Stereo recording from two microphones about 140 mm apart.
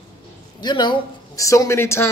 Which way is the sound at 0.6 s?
30° left (ahead or behind).